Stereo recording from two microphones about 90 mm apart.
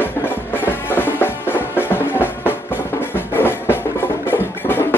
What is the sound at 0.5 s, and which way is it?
Music, 20° left (ahead or behind).